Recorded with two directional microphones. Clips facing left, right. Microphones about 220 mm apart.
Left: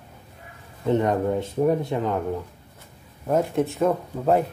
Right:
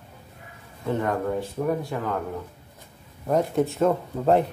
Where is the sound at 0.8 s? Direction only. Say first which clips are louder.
Left 4 dB; 20° left (ahead or behind).